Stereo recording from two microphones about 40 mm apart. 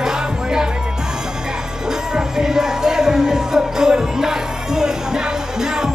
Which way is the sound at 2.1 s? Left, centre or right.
Centre.